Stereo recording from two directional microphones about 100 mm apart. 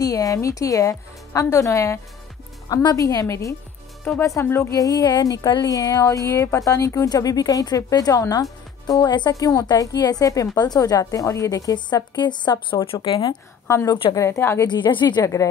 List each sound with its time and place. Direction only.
0.0 s a woman's voice: 35° left (ahead or behind)
4.7 s a woman's voice: 40° left (ahead or behind)
13.7 s a woman's voice: 30° left (ahead or behind)
14.7 s a woman's voice: 50° left (ahead or behind)